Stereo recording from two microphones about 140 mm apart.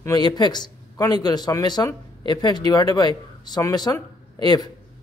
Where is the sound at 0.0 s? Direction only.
30° left (ahead or behind).